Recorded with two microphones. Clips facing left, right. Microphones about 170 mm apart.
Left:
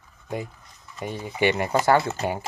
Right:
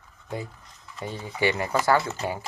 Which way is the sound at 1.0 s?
15° left (ahead or behind).